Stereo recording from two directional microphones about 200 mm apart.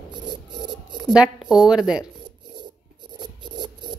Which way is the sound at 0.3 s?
60° right (ahead or behind).